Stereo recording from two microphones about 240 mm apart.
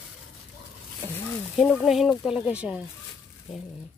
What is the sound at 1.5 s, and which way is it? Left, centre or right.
Speech, centre.